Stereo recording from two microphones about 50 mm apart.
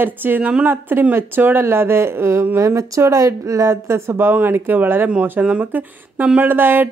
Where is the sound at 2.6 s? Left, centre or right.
Right.